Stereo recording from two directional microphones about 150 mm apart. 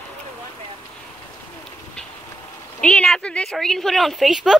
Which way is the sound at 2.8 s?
5° left (ahead or behind).